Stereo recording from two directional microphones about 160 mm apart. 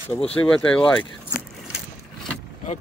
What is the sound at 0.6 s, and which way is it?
Speech, 5° left (ahead or behind).